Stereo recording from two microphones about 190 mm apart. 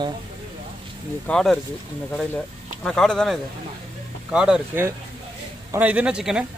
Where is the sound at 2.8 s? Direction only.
5° left (ahead or behind).